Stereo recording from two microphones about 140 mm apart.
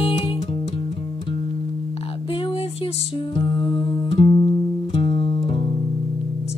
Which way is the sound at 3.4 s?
35° left (ahead or behind).